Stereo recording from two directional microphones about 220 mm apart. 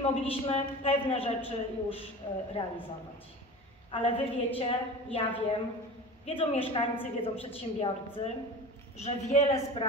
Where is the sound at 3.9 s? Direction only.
25° left (ahead or behind).